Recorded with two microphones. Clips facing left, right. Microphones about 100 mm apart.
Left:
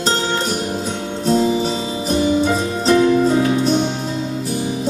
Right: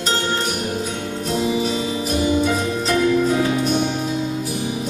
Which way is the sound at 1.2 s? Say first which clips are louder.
Left 5 dB; 30° left (ahead or behind).